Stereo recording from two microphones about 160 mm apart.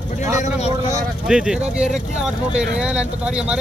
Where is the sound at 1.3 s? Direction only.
5° right (ahead or behind).